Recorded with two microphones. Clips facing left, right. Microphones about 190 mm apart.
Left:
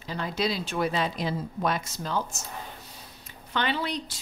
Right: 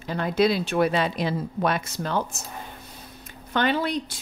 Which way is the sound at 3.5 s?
50° right (ahead or behind).